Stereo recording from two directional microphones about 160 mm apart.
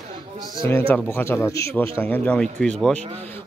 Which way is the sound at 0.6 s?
15° left (ahead or behind).